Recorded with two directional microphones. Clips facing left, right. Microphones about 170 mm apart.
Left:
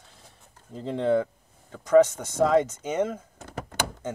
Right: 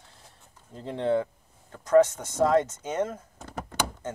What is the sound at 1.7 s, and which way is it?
Speech, 90° left.